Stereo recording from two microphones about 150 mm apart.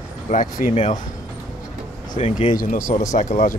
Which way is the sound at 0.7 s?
35° left (ahead or behind).